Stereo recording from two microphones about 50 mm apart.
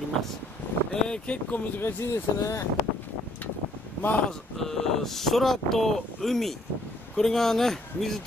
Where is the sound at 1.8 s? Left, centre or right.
Left.